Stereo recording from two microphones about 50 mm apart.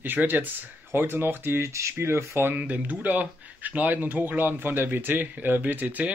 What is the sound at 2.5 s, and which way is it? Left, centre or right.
Speech, right.